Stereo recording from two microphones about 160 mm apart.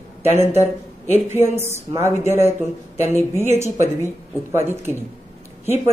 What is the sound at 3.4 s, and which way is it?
Speech, 15° right (ahead or behind).